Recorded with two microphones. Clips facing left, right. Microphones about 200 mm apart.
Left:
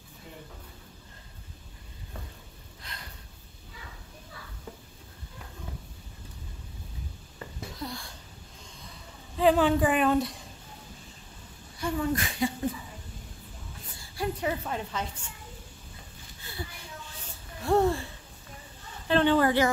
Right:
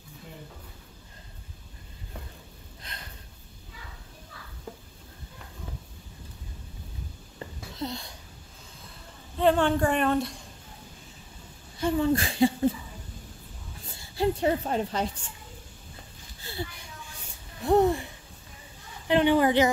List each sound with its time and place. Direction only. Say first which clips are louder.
2.8 s a sound: right 1 dB; 20° right (ahead or behind)
7.3 s wheeze: right 2 dB; 25° right (ahead or behind)
9.4 s a woman's voice: even; 5° left (ahead or behind)
11.8 s speech: right 5 dB; 30° right (ahead or behind)
13.9 s a woman's voice: right 6 dB; 25° right (ahead or behind)
17.6 s a sound: right 2 dB; 20° right (ahead or behind)